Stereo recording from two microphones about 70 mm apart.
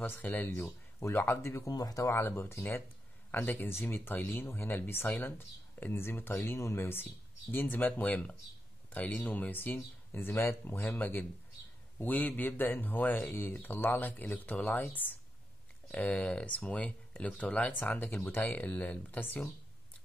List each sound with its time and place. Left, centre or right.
0.0 s speech: left
0.7 s speech: left
1.7 s speech: left
2.1 s speech: left